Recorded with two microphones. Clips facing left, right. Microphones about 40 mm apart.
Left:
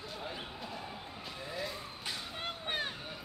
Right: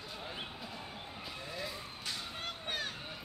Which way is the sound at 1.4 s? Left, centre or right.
Centre.